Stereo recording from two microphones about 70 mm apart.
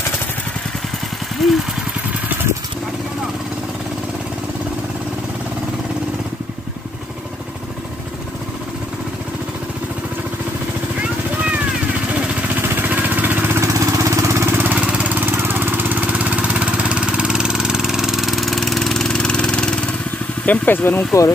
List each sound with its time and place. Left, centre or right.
1.4 s speech: centre
11.0 s vehicle: right
12.6 s vehicle: right
13.6 s vehicle: right
14.8 s lawn mower: centre
15.1 s lawn mower: right; by 19.8 s centre
20.4 s a sound: left